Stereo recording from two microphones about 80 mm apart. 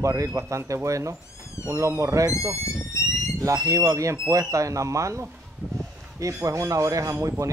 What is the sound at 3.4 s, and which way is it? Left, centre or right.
Speech, right.